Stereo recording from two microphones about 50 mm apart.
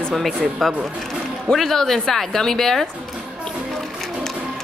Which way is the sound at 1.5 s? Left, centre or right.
Centre.